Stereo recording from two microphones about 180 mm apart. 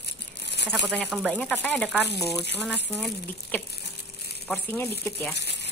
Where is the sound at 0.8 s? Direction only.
Centre (ahead or behind).